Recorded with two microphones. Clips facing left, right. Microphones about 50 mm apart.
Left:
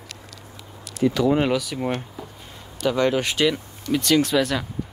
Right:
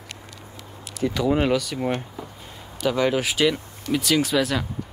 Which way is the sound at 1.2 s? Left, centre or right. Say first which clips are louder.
Right 1 dB; centre.